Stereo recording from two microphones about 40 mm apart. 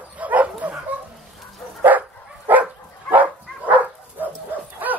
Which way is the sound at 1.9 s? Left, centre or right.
Right.